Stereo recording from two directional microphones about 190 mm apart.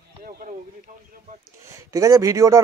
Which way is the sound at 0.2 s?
50° right (ahead or behind).